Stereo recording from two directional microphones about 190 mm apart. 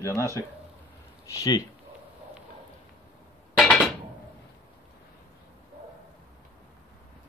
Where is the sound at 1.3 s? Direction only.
20° left (ahead or behind).